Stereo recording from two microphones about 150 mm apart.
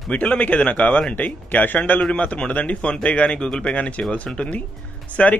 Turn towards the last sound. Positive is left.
turn(degrees=10)  # may be behind; listen again after turning